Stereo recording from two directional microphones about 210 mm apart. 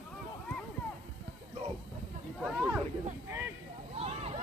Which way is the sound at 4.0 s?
30° right (ahead or behind).